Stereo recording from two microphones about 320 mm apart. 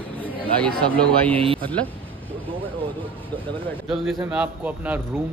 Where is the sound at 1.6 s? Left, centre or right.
Centre.